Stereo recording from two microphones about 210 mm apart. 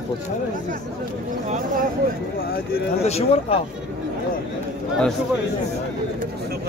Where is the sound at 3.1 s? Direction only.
30° left (ahead or behind).